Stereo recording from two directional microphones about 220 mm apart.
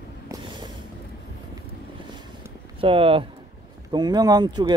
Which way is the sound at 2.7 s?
25° right (ahead or behind).